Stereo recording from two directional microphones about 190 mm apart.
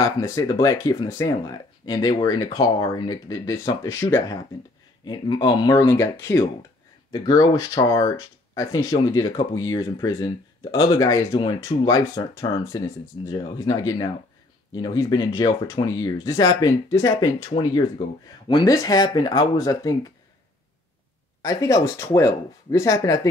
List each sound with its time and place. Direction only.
0.0 s speech: 15° left (ahead or behind)
9.1 s speech: 20° left (ahead or behind)
21.4 s speech: 15° left (ahead or behind)